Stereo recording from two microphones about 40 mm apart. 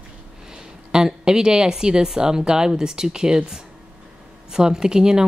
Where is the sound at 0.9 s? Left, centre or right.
Centre.